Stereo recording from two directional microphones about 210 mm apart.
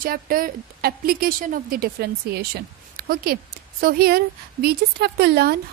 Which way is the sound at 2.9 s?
45° right (ahead or behind).